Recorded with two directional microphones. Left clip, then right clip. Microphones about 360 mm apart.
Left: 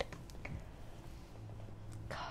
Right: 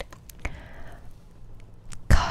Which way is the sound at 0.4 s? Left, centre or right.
Right.